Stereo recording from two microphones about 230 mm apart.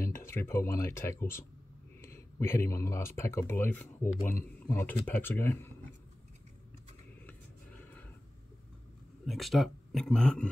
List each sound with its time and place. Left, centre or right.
0.0 s speech: centre
9.2 s speech: centre